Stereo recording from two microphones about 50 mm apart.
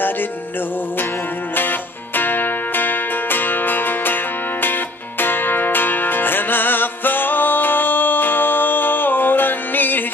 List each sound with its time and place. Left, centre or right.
1.5 s music: left